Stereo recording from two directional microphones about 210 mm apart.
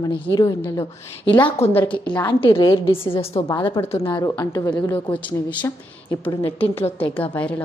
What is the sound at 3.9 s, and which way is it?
Speech, 25° left (ahead or behind).